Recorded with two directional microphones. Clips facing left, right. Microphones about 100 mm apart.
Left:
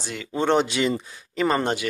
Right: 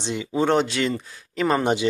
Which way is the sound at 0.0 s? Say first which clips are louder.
Right 6 dB; 20° right (ahead or behind).